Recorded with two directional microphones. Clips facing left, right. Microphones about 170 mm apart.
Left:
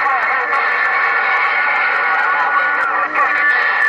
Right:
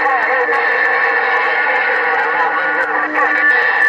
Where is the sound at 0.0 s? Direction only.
45° right (ahead or behind).